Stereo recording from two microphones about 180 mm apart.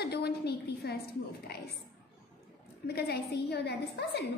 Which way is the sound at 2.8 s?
60° left (ahead or behind).